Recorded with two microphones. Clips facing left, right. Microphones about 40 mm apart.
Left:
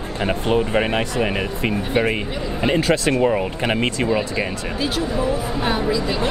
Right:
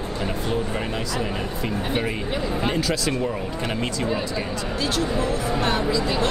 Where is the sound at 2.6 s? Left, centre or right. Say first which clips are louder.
Left 9 dB; left.